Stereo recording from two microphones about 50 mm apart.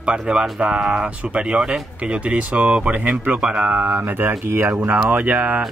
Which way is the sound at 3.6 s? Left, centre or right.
Right.